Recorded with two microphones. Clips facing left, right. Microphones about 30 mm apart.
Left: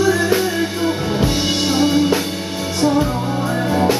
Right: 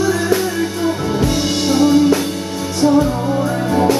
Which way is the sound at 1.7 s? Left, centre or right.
Centre.